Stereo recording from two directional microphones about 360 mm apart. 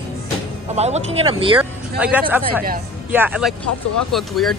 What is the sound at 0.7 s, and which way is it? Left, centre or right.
Speech, centre.